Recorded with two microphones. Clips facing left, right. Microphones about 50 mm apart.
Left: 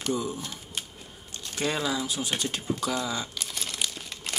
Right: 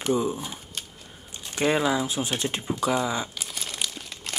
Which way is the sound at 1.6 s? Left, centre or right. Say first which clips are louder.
Right 5 dB; right.